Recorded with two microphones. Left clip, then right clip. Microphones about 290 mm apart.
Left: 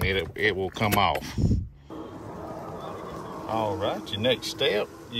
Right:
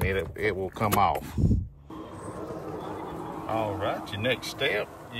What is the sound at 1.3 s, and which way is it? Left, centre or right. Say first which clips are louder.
Speech: even; right.